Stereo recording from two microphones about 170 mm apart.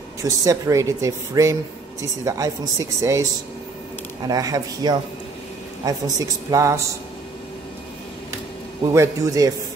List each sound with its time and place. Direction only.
0.2 s speech: 20° right (ahead or behind)
4.3 s speech: 20° right (ahead or behind)
8.9 s speech: 20° right (ahead or behind)